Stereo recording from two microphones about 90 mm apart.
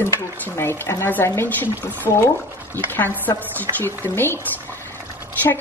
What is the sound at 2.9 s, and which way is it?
Dishes, 20° left (ahead or behind).